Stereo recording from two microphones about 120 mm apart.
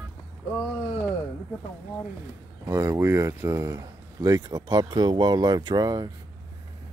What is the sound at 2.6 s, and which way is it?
Speech, 25° right (ahead or behind).